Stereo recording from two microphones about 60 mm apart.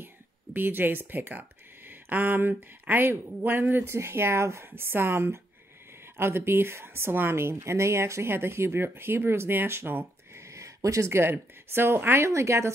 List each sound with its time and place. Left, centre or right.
0.0 s speech: right
3.9 s speech: right
10.5 s a sound: right
11.7 s speech: right